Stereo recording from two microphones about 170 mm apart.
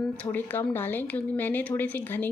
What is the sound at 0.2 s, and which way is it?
A woman's voice, 10° left (ahead or behind).